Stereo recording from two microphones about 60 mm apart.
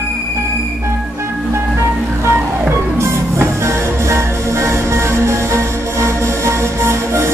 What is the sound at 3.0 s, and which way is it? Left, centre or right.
Music, right.